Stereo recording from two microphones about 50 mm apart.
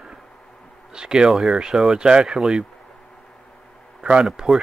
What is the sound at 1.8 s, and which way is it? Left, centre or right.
Speech, centre.